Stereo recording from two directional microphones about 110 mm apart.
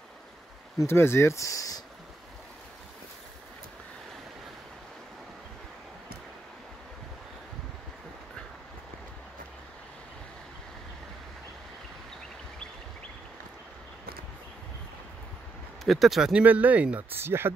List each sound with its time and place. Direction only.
0.7 s speech: 20° left (ahead or behind)
15.8 s speech: centre (ahead or behind); by 17.5 s 20° right (ahead or behind)